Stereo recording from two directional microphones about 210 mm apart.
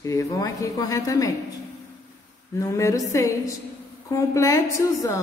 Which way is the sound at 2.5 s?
15° left (ahead or behind).